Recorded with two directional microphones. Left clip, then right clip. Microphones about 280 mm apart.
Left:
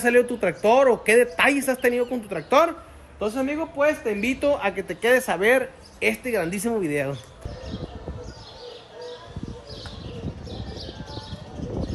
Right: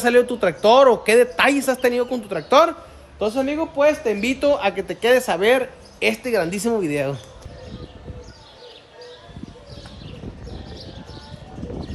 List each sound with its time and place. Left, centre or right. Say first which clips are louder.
0.0 s speech: right 3 dB; centre